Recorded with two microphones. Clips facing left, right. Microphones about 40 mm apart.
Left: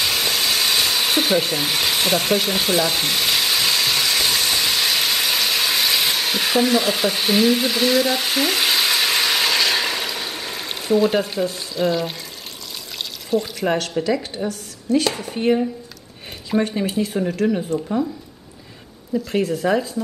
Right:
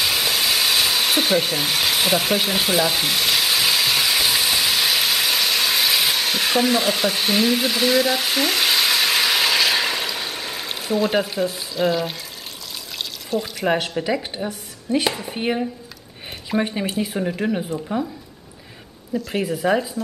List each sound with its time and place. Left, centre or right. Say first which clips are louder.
0.0 s hair dryer: even; centre
13.3 s speech: left 1 dB; centre
13.9 s a woman's voice: left 2 dB; centre
17.6 s speech: left 3 dB; centre
19.1 s speech: left 3 dB; centre